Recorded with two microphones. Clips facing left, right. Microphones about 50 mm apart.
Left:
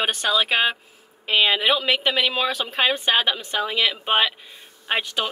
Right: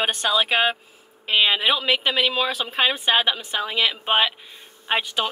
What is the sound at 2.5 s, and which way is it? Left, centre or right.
Speech, centre.